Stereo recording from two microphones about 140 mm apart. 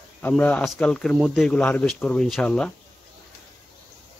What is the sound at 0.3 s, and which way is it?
A man's voice, 10° left (ahead or behind).